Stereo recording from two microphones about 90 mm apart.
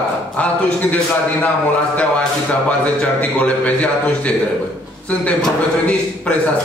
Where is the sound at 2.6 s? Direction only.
15° left (ahead or behind).